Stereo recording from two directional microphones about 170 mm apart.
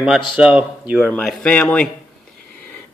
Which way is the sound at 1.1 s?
5° left (ahead or behind).